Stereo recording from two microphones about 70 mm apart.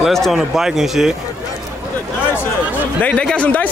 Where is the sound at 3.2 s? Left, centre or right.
Centre.